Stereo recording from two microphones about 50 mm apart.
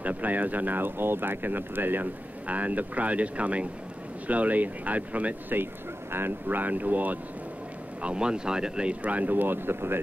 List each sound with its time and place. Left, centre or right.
0.0 s speech: right
2.4 s speech: right
6.1 s speech: right
8.0 s speech: centre; by 9.9 s right